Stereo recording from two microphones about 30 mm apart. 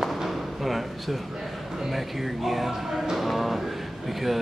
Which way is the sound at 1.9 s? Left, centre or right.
Centre.